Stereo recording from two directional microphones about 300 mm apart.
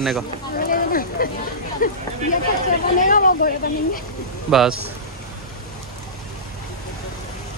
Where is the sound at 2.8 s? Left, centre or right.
Left.